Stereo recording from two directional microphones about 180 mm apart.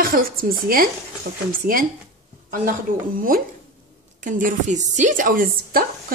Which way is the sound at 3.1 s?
50° right (ahead or behind).